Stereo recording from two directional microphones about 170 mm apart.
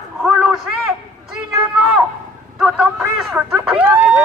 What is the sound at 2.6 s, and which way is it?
Speech, 5° right (ahead or behind).